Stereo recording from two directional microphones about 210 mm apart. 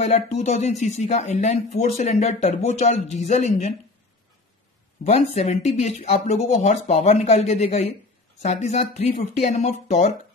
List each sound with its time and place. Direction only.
0.0 s speech: 30° left (ahead or behind)
5.0 s speech: 30° left (ahead or behind)